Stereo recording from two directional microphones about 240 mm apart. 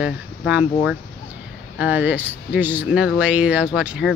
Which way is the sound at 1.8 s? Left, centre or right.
Centre.